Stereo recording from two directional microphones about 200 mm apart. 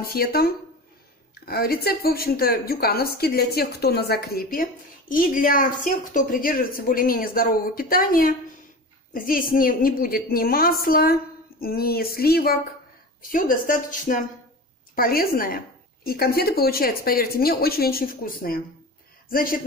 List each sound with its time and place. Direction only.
0.0 s a woman's voice: 50° left (ahead or behind)